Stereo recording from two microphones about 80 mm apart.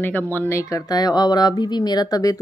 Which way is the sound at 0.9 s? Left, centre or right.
Left.